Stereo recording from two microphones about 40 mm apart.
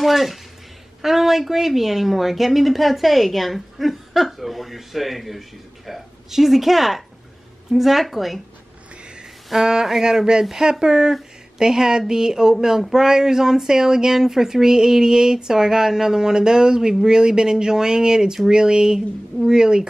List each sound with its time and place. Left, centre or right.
0.0 s a woman's voice: centre
9.5 s speech: centre